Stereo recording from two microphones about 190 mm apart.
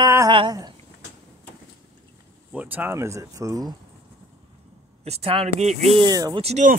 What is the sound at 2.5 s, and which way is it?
Speech, 10° right (ahead or behind).